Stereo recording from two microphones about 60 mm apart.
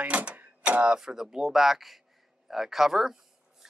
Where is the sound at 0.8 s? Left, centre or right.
Centre.